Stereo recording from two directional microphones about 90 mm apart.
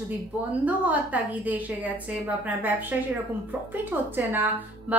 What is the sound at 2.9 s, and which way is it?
A woman's voice, 20° right (ahead or behind).